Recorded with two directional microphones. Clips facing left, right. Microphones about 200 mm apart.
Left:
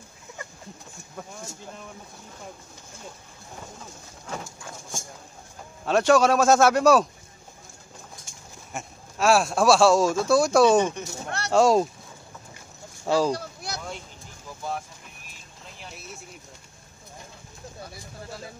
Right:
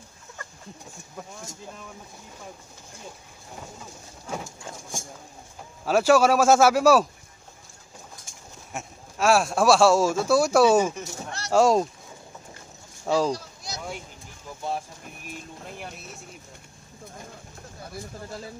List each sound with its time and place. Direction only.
5.9 s speech: 5° right (ahead or behind)
8.7 s speech: centre (ahead or behind)
11.2 s a sound: 60° left (ahead or behind)
11.5 s speech: centre (ahead or behind)
13.0 s speech: centre (ahead or behind)
13.3 s a sound: 60° left (ahead or behind)
15.2 s vehicle: 55° right (ahead or behind)